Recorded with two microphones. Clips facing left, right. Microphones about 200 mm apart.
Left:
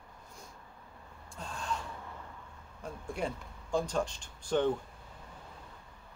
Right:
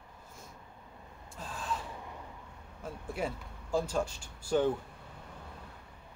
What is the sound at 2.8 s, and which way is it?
Speech, 5° right (ahead or behind).